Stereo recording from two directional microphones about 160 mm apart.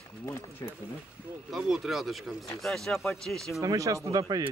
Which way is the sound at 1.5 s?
Centre (ahead or behind).